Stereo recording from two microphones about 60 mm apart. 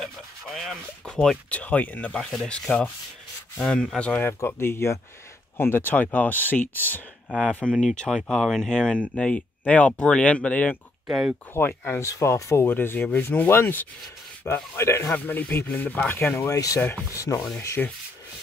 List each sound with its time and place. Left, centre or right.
0.0 s speech: centre
1.5 s speech: left
2.1 s speech: centre
3.7 s speech: centre
4.4 s speech: left
5.6 s speech: left
7.2 s speech: centre
11.5 s speech: left
12.0 s speech: left
12.6 s speech: left
13.5 s speech: left
15.1 s speech: left
16.4 s speech: left
17.8 s speech: left